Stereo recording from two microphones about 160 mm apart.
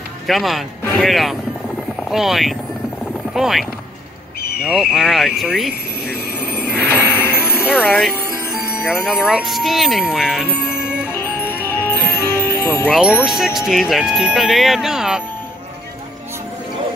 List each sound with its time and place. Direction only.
0.3 s speech: centre (ahead or behind)
4.4 s bird: 75° left (ahead or behind)
4.6 s speech: 5° right (ahead or behind)
6.8 s vehicle: 15° left (ahead or behind)
7.6 s speech: 5° right (ahead or behind)
9.0 s speech: 5° right (ahead or behind)
11.1 s music: 15° left (ahead or behind)
12.9 s speech: 5° right (ahead or behind)